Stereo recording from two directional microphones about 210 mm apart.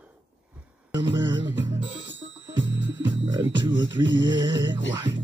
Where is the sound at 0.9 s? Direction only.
20° right (ahead or behind).